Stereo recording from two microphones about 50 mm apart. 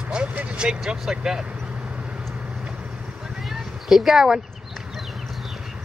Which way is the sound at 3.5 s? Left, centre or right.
Centre.